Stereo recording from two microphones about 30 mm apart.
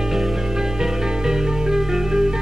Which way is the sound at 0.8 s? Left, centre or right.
Centre.